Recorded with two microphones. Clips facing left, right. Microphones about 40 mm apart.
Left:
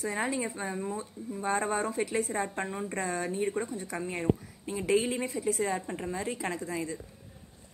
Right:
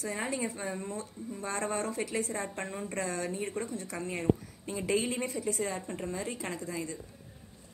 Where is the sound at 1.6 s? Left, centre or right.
Centre.